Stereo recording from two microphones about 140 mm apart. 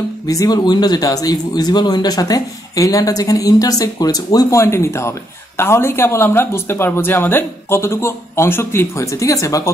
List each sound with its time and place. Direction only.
0.3 s a man's voice: 25° left (ahead or behind)